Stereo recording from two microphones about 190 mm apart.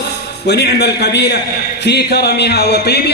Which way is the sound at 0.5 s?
60° left (ahead or behind).